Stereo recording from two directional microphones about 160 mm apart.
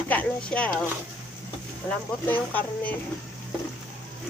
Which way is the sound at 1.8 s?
10° left (ahead or behind).